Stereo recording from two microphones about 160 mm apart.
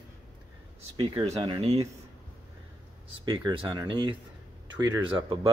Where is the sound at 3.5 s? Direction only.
30° right (ahead or behind).